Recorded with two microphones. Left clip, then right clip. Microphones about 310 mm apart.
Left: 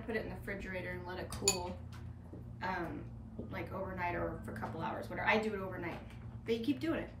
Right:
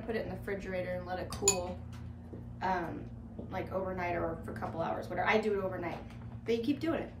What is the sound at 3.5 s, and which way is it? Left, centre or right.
Speech, centre.